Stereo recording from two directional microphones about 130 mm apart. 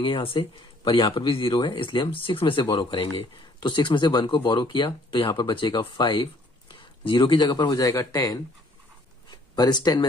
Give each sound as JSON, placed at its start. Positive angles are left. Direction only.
{"t": 0.0, "sound": "speech", "side_deg": 45}